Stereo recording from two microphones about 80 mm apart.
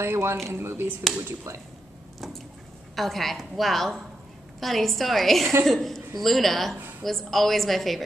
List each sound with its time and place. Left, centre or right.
0.0 s speech: right
2.1 s a sound: centre
3.0 s a woman's voice: centre